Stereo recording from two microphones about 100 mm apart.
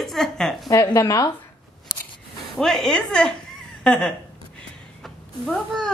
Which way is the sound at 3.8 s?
5° left (ahead or behind).